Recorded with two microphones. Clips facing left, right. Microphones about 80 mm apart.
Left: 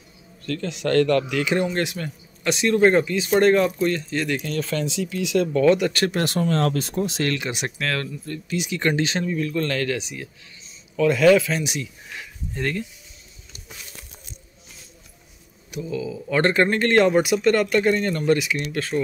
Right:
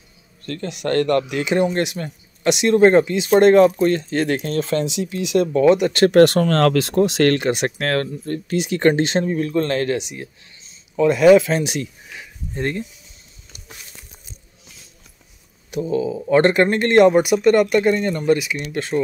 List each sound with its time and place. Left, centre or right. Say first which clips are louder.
0.8 s speech: right 1 dB; right
1.3 s speech: right 3 dB; right
5.3 s speech: right 3 dB; right
6.0 s speech: right 15 dB; right
11.0 s speech: right 4 dB; centre
11.5 s speech: right 5 dB; right
12.5 s speech: right 2 dB; right
15.7 s speech: right 7 dB; right; by 18.8 s centre